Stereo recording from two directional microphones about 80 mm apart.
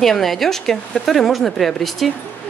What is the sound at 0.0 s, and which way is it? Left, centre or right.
Speech, centre.